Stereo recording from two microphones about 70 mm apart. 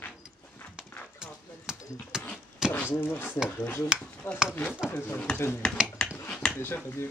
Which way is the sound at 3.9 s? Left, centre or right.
Centre.